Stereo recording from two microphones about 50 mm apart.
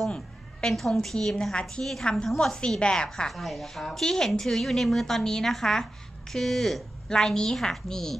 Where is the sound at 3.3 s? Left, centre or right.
Centre.